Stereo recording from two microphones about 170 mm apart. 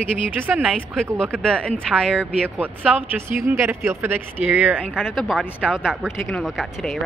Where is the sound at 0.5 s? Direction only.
5° right (ahead or behind).